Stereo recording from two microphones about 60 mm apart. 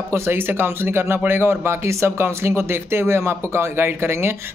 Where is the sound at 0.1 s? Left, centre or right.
Right.